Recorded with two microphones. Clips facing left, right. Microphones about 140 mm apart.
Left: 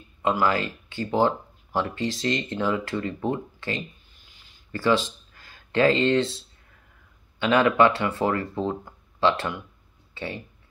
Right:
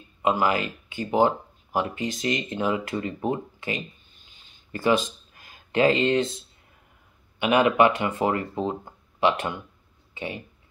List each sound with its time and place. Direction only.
0.2 s speech: 20° right (ahead or behind)
4.3 s a sound: 20° right (ahead or behind)
7.3 s speech: 15° right (ahead or behind)